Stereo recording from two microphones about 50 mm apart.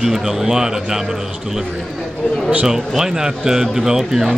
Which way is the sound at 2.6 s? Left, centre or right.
Centre.